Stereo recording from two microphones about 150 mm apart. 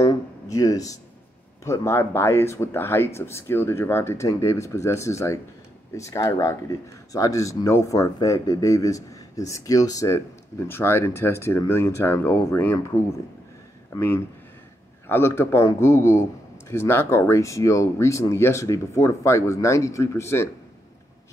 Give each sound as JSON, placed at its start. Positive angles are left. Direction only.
{"t": 0.0, "sound": "speech", "side_deg": 25}